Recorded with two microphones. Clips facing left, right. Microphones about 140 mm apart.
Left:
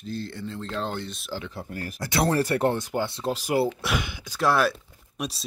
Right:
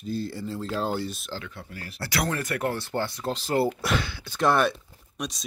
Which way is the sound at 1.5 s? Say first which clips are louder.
Left 6 dB; 40° left (ahead or behind).